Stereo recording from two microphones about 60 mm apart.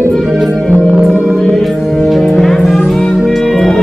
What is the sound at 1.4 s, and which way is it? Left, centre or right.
Music, centre.